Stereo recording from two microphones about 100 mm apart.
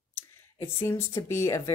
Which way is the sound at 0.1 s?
25° left (ahead or behind).